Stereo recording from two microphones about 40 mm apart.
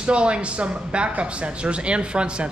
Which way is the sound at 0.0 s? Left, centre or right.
Right.